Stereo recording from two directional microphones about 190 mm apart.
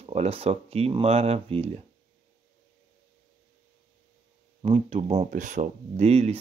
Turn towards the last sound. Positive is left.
turn(degrees=-35)  # may be behind; listen again after turning